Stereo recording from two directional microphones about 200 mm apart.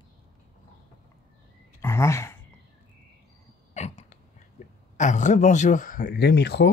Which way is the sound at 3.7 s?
35° left (ahead or behind).